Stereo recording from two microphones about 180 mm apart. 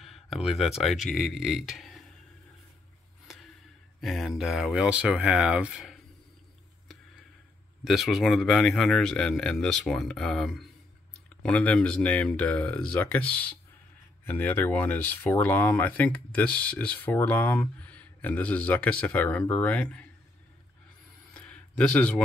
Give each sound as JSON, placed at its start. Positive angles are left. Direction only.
{"t": 0.0, "sound": "speech", "side_deg": 0}
{"t": 4.0, "sound": "a man's voice", "side_deg": 0}
{"t": 7.8, "sound": "a man's voice", "side_deg": 0}
{"t": 21.3, "sound": "a sound", "side_deg": 5}